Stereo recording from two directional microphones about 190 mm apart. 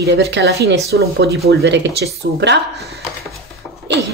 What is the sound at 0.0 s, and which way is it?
Speech, 60° right (ahead or behind).